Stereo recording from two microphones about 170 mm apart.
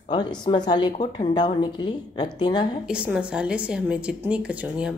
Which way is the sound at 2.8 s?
5° right (ahead or behind).